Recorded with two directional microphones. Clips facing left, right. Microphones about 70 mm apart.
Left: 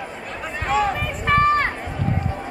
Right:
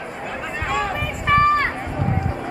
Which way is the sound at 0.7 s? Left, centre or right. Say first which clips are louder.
Left 4 dB; centre.